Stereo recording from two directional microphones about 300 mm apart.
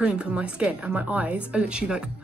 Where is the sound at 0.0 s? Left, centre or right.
Centre.